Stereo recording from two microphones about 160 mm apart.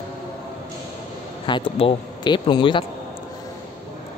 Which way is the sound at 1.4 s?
30° left (ahead or behind).